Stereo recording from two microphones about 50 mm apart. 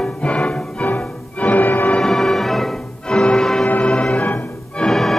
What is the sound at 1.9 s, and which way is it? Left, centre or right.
Music, centre.